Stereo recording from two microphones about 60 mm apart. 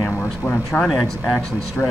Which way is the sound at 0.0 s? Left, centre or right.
Centre.